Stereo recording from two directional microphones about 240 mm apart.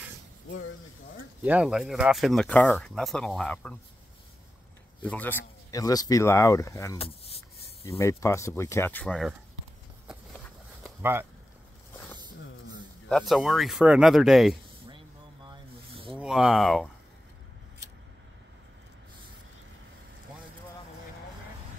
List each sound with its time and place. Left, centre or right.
0.5 s speech: left
1.4 s speech: centre
5.0 s speech: centre
8.0 s speech: centre
10.0 s walk: centre
13.1 s speech: centre
15.4 s a sound: right
16.2 s speech: centre